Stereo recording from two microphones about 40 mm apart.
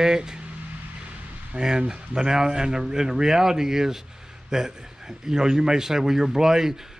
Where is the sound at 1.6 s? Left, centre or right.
Centre.